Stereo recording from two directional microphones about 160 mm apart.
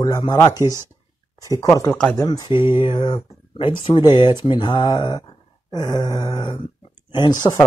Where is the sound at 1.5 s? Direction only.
20° left (ahead or behind).